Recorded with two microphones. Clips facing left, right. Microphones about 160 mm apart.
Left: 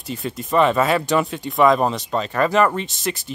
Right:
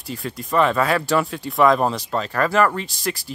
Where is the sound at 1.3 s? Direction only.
Centre (ahead or behind).